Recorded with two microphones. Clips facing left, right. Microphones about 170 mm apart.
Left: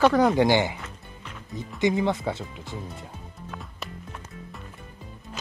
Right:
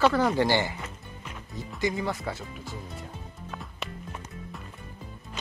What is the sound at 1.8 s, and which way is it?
Speech, 20° left (ahead or behind).